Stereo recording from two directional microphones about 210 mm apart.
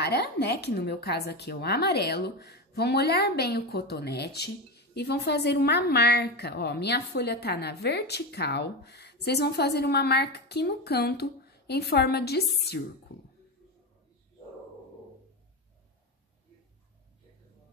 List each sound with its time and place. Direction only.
0.0 s a woman's voice: 50° left (ahead or behind)